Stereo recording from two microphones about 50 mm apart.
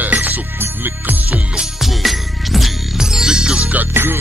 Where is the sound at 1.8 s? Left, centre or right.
Centre.